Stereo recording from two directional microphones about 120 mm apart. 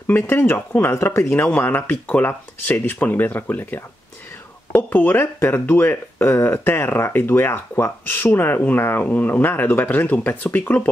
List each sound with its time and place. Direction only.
0.0 s speech: 20° left (ahead or behind)